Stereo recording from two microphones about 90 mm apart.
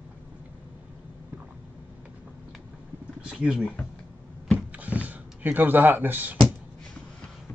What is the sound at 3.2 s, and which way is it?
Speech, 10° right (ahead or behind).